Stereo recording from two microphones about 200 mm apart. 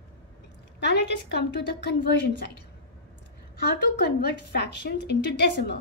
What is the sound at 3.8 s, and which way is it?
A woman's voice, 55° left (ahead or behind).